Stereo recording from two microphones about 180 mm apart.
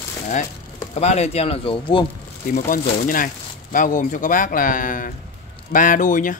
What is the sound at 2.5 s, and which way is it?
Speech, 50° left (ahead or behind).